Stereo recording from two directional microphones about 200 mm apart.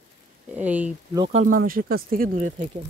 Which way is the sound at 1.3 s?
40° right (ahead or behind).